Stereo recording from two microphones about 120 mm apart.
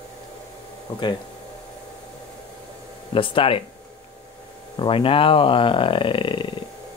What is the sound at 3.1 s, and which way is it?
Speech, 45° left (ahead or behind).